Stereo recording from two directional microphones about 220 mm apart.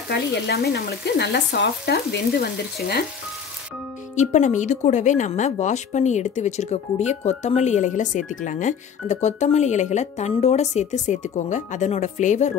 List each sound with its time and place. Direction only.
0.1 s speech: 50° left (ahead or behind)
4.1 s speech: 35° left (ahead or behind)